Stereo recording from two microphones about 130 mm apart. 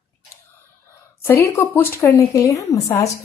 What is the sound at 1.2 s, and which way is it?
Speech, 20° left (ahead or behind).